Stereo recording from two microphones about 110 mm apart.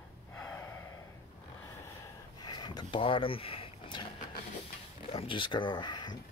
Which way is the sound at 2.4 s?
40° left (ahead or behind).